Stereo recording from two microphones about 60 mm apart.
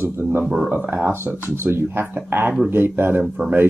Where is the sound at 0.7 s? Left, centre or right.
Right.